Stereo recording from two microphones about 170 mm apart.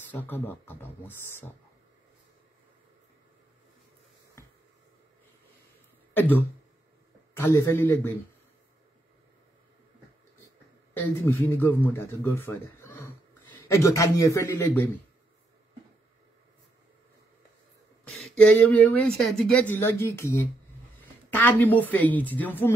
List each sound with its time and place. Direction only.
0.0 s speech: 10° left (ahead or behind)
6.1 s speech: 10° left (ahead or behind)
11.0 s speech: 10° left (ahead or behind)
18.4 s a woman's voice: 10° left (ahead or behind)